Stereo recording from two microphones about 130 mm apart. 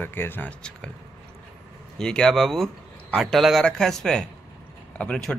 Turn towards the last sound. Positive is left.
turn(degrees=10)  # may be behind; listen again after turning